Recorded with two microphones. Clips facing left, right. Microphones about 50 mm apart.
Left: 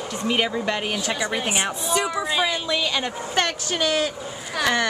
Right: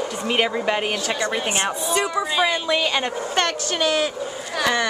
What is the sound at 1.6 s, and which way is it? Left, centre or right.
Speech, centre.